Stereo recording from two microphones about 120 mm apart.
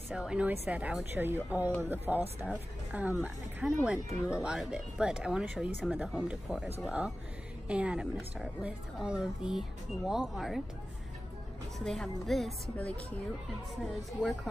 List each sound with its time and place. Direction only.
0.1 s a woman's voice: 10° right (ahead or behind)
11.8 s a woman's voice: 5° left (ahead or behind)
12.7 s a woman's voice: 10° left (ahead or behind)
14.2 s a woman's voice: centre (ahead or behind)